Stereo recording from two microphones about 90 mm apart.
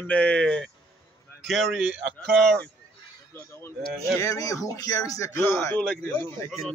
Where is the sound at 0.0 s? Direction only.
15° left (ahead or behind).